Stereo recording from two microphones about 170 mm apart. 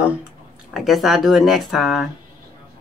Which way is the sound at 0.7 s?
Centre (ahead or behind).